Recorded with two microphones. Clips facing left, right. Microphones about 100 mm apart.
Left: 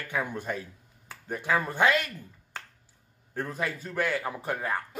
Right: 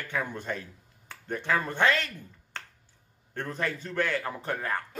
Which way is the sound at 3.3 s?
5° left (ahead or behind).